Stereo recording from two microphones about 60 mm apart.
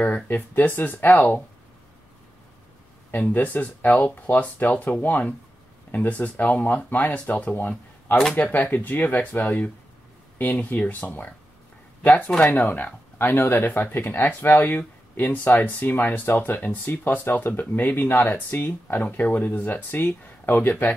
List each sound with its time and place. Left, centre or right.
0.0 s speech: left
3.1 s speech: left